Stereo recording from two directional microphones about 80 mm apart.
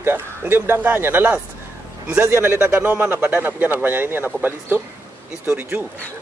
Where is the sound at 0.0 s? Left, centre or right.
Right.